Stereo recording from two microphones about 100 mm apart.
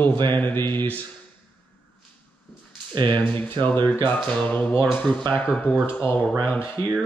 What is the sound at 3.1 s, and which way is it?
Speech, 20° left (ahead or behind).